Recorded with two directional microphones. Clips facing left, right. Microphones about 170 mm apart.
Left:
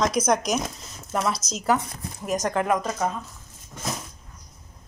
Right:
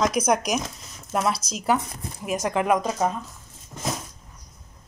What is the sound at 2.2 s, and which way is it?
Speech, 10° right (ahead or behind).